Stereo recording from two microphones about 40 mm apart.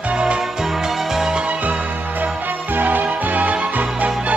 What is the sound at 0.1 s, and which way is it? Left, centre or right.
Music, right.